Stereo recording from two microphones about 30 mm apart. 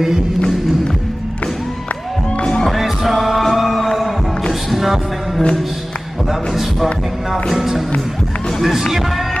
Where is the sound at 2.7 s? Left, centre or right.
Centre.